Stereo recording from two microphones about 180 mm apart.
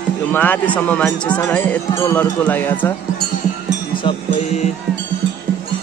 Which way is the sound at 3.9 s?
30° left (ahead or behind).